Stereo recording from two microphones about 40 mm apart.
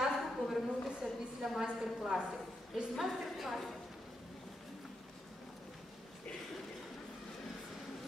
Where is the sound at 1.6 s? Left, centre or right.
Right.